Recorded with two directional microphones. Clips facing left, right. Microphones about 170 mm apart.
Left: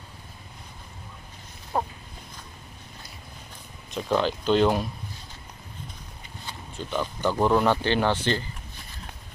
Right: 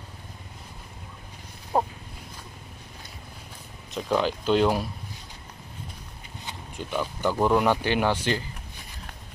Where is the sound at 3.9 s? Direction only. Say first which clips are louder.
Even; 5° right (ahead or behind).